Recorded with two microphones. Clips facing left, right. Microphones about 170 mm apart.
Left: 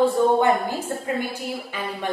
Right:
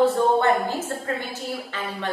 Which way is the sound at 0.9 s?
10° left (ahead or behind).